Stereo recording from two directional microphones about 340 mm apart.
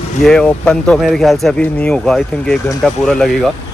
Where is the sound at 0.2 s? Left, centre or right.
Centre.